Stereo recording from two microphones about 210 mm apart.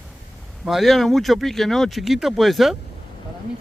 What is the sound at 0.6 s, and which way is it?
Speech, centre (ahead or behind).